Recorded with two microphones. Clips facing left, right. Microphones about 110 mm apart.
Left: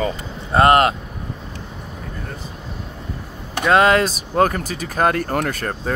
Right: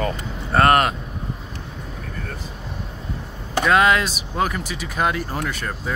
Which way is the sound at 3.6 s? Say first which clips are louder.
Left 3 dB; 30° left (ahead or behind).